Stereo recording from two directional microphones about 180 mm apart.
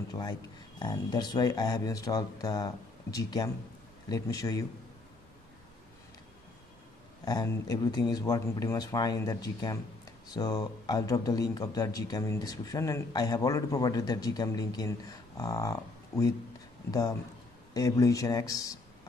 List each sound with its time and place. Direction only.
0.1 s speech: 20° left (ahead or behind)
7.2 s speech: 20° left (ahead or behind)